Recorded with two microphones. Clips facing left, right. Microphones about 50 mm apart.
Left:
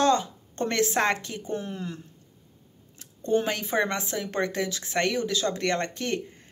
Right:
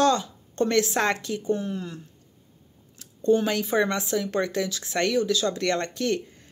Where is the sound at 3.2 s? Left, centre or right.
Left.